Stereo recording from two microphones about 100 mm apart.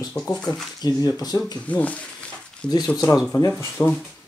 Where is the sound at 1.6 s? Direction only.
15° left (ahead or behind).